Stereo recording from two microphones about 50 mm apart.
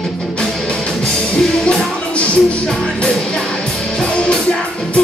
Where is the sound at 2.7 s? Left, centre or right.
Centre.